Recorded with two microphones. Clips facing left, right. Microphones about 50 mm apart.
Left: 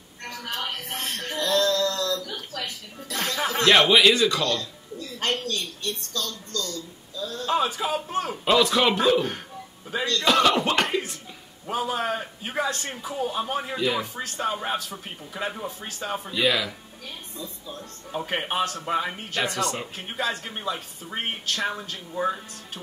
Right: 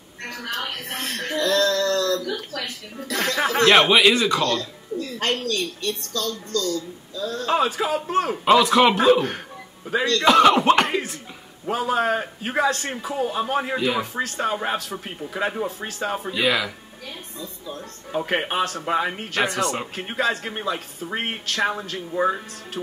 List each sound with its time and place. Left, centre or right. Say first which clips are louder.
0.2 s a sound: right 3 dB; right
3.6 s speech: right 2 dB; right
4.4 s speech: right 3 dB; right
4.9 s speech: right 3 dB; right
8.5 s speech: right 4 dB; centre
9.8 s speech: right 5 dB; right
10.2 s speech: right 5 dB; centre
11.6 s speech: right 5 dB; right; by 16.7 s centre
17.4 s a man's voice: right 3 dB; right